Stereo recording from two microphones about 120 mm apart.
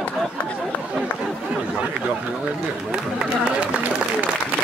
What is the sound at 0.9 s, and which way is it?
Chatter, 5° right (ahead or behind).